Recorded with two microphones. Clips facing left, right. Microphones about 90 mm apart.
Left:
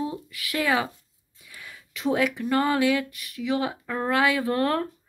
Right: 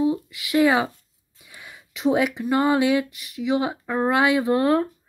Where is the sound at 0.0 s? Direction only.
15° right (ahead or behind).